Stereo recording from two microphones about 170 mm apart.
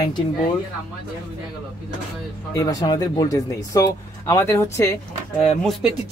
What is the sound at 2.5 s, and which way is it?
Speech, 20° left (ahead or behind).